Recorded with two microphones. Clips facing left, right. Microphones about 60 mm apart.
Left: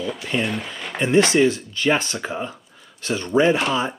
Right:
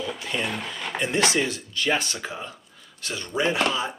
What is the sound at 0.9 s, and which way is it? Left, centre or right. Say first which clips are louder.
Speech: left 7 dB; left.